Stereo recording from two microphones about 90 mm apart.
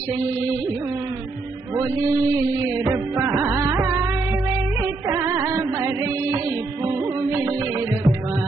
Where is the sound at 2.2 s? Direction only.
35° right (ahead or behind).